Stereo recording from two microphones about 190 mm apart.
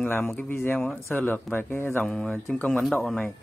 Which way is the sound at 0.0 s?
10° left (ahead or behind).